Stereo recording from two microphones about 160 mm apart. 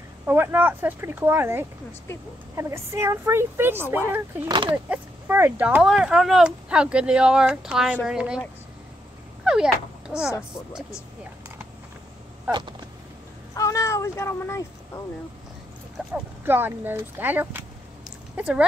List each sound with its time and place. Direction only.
0.3 s speech: 15° right (ahead or behind)
4.5 s speech: 30° right (ahead or behind)
4.8 s speech: 10° right (ahead or behind)
9.4 s speech: 5° right (ahead or behind)
12.4 s a sound: 30° right (ahead or behind)
13.6 s speech: 20° left (ahead or behind)
16.0 s speech: 5° right (ahead or behind)